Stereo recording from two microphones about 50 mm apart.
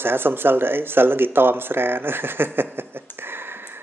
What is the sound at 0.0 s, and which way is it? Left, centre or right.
Speech, right.